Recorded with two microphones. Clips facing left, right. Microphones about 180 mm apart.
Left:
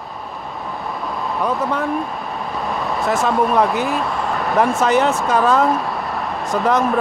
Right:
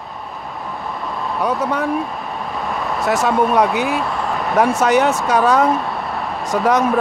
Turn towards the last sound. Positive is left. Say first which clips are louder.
# right 1 dB
turn(degrees=0)  # may be behind; listen again after turning